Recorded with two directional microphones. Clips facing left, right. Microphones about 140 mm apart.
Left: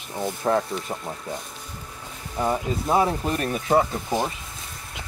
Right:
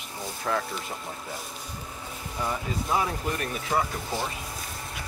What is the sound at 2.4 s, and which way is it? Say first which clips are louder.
Speech: left 6 dB; 30° left (ahead or behind).